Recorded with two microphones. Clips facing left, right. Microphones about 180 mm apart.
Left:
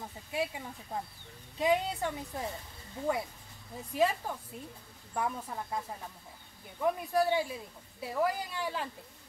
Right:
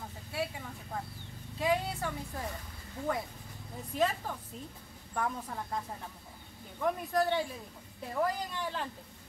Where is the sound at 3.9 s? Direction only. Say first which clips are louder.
Left 2 dB; 10° left (ahead or behind).